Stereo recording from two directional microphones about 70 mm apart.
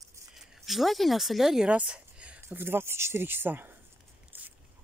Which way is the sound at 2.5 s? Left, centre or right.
Right.